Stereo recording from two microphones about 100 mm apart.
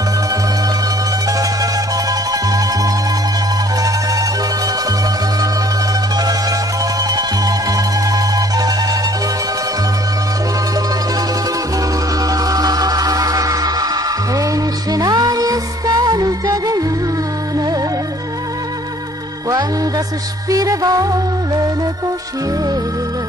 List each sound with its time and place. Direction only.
1.4 s music: 35° right (ahead or behind)
7.1 s music: 40° right (ahead or behind)
12.3 s music: 35° right (ahead or behind)
20.4 s music: 35° right (ahead or behind)